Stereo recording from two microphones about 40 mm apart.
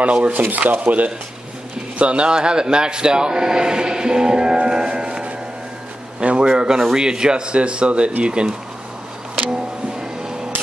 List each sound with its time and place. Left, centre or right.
0.0 s speech: right
0.3 s speech: right
2.0 s a man's voice: right
4.6 s music: centre
6.1 s a man's voice: right
9.3 s a sound: centre